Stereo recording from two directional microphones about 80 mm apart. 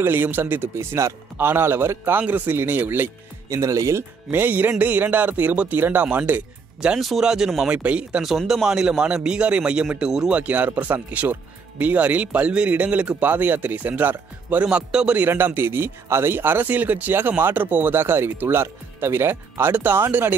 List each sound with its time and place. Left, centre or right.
0.0 s speech: right
3.4 s speech: right
4.3 s speech: right
7.0 s a man's voice: centre
8.2 s a man's voice: centre
15.1 s speech: right